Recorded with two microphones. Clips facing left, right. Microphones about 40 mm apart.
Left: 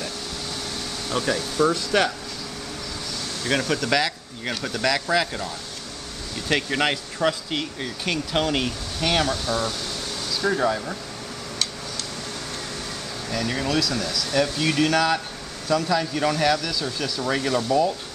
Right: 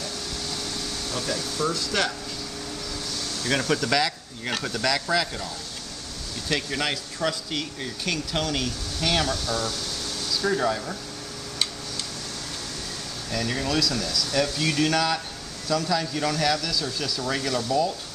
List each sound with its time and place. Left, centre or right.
1.1 s speech: left
3.4 s speech: centre
6.5 s speech: left
9.0 s speech: centre
13.3 s speech: centre